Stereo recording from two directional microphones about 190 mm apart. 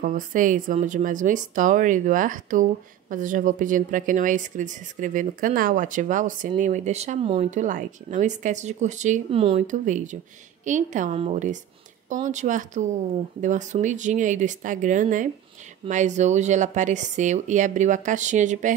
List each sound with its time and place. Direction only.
0.0 s a woman's voice: 45° right (ahead or behind)